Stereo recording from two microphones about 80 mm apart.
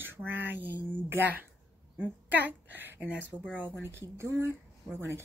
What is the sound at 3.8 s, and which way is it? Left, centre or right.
Speech, right.